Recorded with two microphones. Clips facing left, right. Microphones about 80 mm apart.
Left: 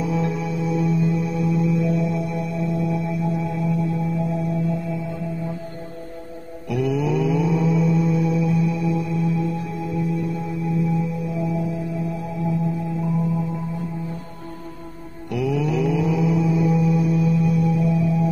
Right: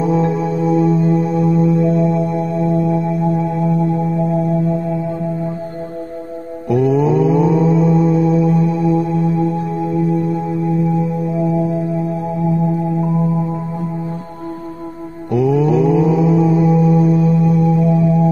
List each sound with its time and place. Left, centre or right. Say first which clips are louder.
0.0 s music: right 8 dB; right
6.7 s mantra: right 8 dB; right
15.3 s mantra: right 9 dB; right
16.3 s music: right 7 dB; right